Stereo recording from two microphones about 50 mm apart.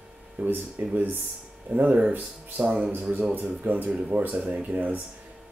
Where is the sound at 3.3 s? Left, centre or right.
Right.